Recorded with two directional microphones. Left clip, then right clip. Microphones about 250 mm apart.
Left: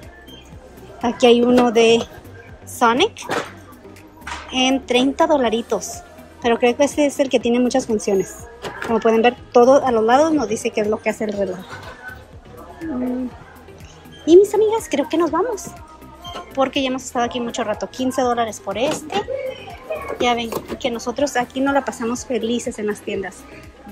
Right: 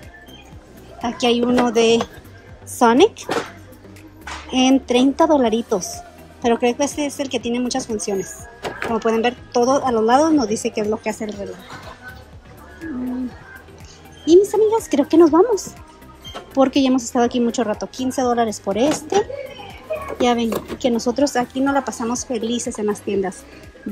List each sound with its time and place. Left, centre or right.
1.0 s a woman's voice: centre
4.5 s a woman's voice: centre
14.2 s a woman's voice: centre
20.4 s speech: centre
20.8 s a woman's voice: right